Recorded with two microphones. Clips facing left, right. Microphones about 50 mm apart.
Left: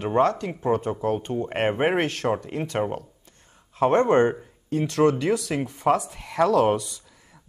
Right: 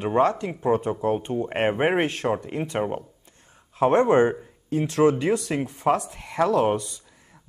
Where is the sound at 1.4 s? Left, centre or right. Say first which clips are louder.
Right 1 dB; centre.